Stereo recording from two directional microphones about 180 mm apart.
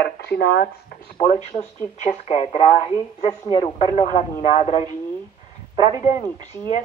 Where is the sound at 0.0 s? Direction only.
65° left (ahead or behind).